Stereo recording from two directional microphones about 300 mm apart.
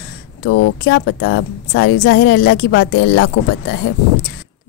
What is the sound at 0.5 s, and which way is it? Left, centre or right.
Speech, left.